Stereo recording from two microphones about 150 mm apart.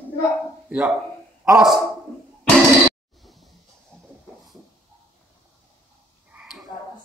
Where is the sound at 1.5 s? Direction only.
5° right (ahead or behind).